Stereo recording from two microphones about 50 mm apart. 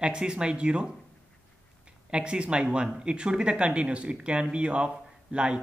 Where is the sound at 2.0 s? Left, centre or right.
Centre.